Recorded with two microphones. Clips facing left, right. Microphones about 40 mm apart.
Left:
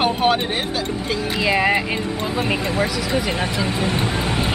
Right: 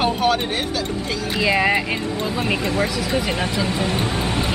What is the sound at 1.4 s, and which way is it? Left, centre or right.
Speech, centre.